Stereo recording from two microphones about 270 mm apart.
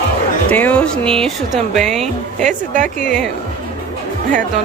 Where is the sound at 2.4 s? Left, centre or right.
Right.